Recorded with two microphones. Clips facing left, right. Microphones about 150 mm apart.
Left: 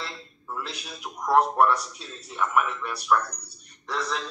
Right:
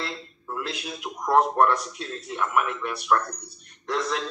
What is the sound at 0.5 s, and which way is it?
Speech, 5° right (ahead or behind).